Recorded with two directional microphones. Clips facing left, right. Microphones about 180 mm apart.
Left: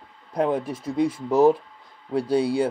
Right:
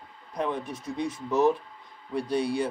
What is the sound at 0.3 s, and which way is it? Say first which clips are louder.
Speech: left 7 dB; 30° left (ahead or behind).